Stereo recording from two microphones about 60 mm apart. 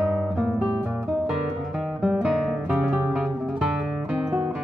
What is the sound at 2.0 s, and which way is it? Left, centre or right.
Music, centre.